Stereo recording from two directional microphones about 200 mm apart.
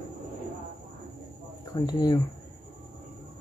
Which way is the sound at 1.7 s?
20° left (ahead or behind).